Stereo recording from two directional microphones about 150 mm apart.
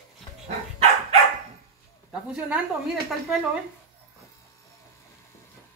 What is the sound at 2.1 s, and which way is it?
Speech, 5° right (ahead or behind).